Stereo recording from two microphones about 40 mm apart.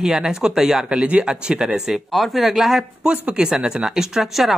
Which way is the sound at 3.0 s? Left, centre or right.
Right.